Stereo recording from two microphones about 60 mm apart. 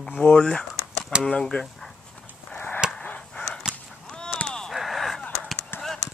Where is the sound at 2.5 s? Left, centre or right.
Left.